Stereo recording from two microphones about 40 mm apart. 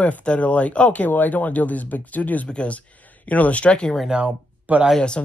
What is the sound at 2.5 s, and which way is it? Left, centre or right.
Speech, left.